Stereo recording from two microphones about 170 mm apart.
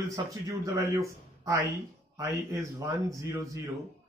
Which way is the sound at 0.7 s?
15° right (ahead or behind).